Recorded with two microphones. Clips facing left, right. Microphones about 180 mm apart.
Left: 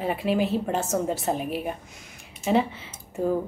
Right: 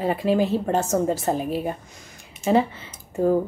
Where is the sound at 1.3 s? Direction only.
35° right (ahead or behind).